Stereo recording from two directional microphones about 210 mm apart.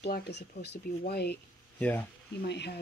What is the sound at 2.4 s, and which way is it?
Speech, 55° left (ahead or behind).